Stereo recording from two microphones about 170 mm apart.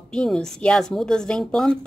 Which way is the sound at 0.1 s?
5° left (ahead or behind).